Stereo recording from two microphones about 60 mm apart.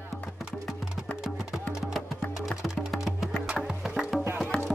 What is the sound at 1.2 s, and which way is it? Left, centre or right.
Music, centre.